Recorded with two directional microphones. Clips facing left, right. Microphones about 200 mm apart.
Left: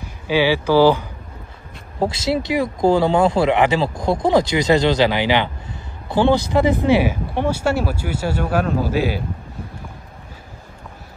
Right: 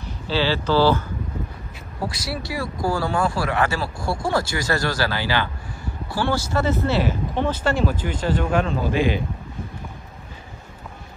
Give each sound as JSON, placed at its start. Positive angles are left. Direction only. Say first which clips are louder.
{"t": 0.3, "sound": "speech", "louder": "left 5 dB", "side_deg": 15}
{"t": 2.0, "sound": "speech", "louder": "left 9 dB", "side_deg": 25}